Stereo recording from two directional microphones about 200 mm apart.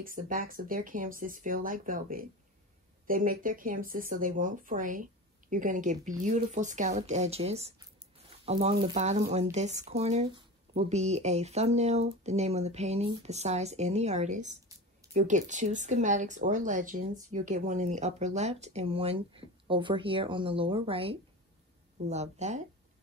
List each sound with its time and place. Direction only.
0.0 s speech: 45° right (ahead or behind)